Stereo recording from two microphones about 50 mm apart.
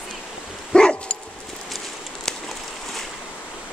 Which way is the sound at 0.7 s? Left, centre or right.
Centre.